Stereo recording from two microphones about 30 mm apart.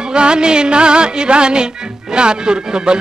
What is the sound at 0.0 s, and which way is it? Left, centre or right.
Music, right.